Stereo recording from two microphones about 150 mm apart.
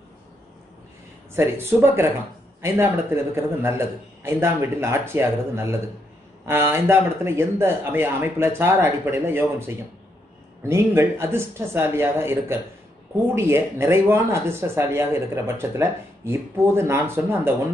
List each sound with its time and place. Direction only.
1.3 s speech: 15° right (ahead or behind)